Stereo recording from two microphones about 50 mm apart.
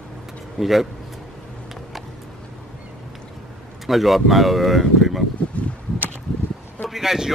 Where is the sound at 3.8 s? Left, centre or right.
Centre.